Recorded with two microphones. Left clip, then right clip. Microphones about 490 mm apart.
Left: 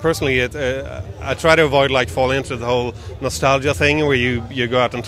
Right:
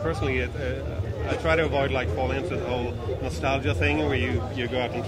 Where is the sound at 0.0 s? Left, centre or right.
Left.